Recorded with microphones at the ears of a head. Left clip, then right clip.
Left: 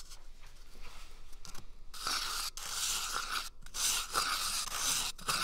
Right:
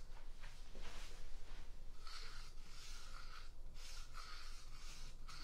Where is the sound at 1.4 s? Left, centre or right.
Left.